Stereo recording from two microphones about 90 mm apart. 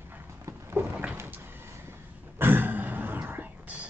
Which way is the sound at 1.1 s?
25° right (ahead or behind).